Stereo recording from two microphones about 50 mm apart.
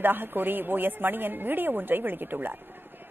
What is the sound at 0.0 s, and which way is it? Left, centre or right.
Speech, right.